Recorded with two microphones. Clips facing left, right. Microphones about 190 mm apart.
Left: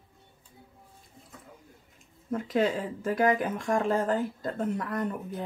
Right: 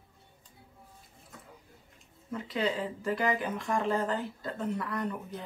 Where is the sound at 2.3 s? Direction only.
45° left (ahead or behind).